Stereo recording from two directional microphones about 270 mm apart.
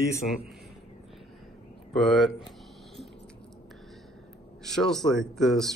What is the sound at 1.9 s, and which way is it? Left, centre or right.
Speech, centre.